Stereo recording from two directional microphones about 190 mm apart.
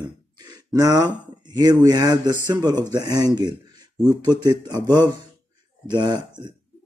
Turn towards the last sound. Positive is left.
turn(degrees=-25)  # may be behind; listen again after turning